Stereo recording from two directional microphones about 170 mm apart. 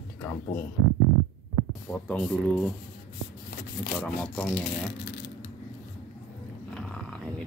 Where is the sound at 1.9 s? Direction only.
5° left (ahead or behind).